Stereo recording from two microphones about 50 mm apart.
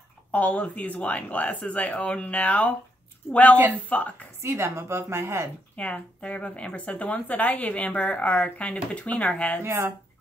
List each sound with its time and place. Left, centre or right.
0.3 s a woman's voice: left
3.3 s speech: left
3.9 s a woman's voice: left
4.4 s a woman's voice: right
5.8 s a woman's voice: left
9.6 s a woman's voice: right